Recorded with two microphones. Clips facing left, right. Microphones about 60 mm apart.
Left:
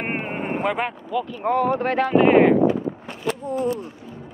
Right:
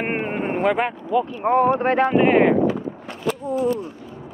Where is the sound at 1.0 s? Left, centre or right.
Right.